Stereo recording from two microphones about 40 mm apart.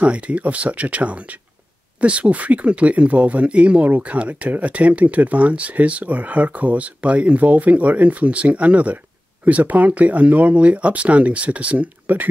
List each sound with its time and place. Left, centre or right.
0.0 s speech: right
3.8 s speech: right
4.2 s speech: right